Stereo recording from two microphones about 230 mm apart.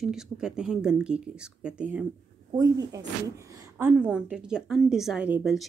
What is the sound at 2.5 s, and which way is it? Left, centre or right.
A woman's voice, centre.